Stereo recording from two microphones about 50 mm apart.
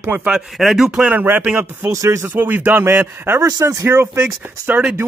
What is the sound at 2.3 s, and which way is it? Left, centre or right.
Speech, right.